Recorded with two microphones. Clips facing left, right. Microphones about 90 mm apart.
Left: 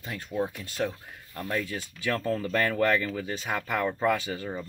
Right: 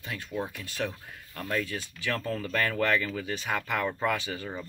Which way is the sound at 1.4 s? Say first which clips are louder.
Even; 20° left (ahead or behind).